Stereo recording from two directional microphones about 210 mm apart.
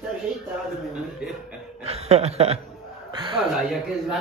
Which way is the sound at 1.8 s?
30° right (ahead or behind).